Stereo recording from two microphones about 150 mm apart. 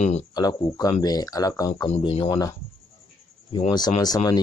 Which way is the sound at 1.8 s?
45° left (ahead or behind).